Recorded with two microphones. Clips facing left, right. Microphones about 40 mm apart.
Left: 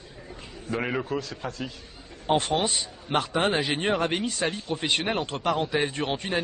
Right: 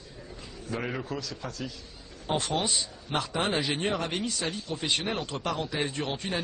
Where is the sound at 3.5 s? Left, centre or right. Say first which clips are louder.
Left 3 dB; centre.